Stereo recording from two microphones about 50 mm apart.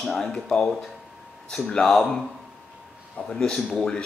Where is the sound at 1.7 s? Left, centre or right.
Centre.